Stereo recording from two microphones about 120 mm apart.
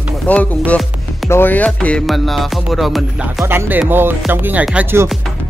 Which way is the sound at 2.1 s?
Centre (ahead or behind).